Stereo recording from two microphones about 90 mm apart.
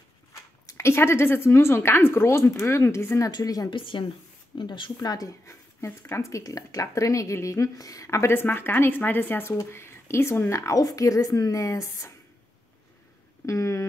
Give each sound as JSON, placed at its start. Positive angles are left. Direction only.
{"t": 0.7, "sound": "speech", "side_deg": 30}
{"t": 3.3, "sound": "a woman's voice", "side_deg": 50}
{"t": 3.7, "sound": "speech", "side_deg": 70}
{"t": 4.9, "sound": "speech", "side_deg": 45}
{"t": 13.5, "sound": "speech", "side_deg": 35}